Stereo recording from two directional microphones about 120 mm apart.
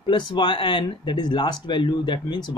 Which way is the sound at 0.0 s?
40° left (ahead or behind).